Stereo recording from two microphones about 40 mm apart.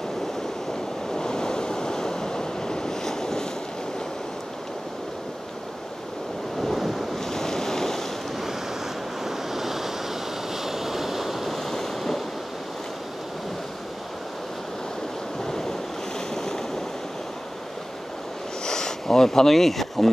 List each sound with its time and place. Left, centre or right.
1.1 s waves: centre
6.6 s waves: centre
7.2 s waves: centre
9.2 s waves: centre
10.5 s train: centre
15.4 s waves: centre
18.7 s a sound: centre